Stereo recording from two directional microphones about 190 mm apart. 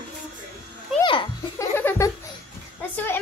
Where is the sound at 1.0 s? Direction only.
25° left (ahead or behind).